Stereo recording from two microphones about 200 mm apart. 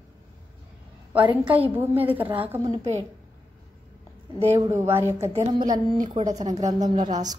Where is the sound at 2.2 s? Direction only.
25° right (ahead or behind).